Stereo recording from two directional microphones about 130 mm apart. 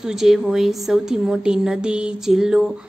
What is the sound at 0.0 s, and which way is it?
A woman's voice, 5° right (ahead or behind).